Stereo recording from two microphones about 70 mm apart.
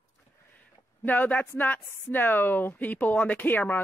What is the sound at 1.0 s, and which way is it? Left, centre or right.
Speech, left.